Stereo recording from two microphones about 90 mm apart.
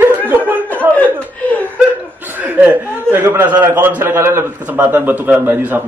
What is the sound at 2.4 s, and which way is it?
A man's voice, 20° right (ahead or behind).